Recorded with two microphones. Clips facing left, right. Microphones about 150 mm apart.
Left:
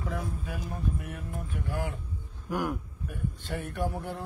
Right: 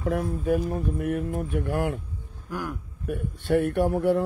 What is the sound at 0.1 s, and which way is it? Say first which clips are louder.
Speech: right 11 dB; 55° right (ahead or behind).